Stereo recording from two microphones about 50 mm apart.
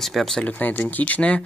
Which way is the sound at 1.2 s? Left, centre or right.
Left.